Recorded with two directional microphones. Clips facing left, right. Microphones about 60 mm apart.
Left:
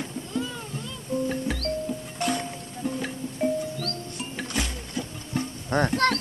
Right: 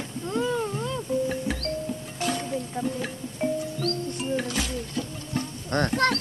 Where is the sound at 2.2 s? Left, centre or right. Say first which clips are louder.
Left 1 dB; centre.